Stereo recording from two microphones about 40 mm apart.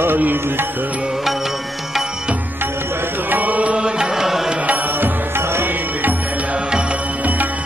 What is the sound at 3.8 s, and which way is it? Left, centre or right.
Music, centre.